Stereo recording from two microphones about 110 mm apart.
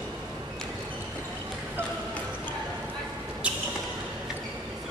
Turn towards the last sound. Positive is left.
turn(degrees=-10)  # may be behind; listen again after turning